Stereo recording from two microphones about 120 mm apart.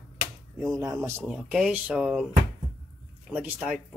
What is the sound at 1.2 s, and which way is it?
Speech, 10° right (ahead or behind).